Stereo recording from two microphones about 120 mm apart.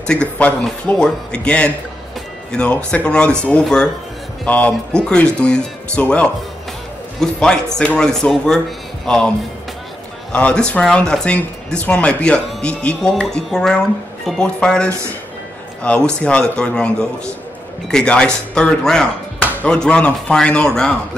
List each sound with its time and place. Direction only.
0.0 s speech: 10° left (ahead or behind)
10.3 s speech: 10° left (ahead or behind)
14.9 s speech: 20° right (ahead or behind)
15.8 s speech: 10° left (ahead or behind)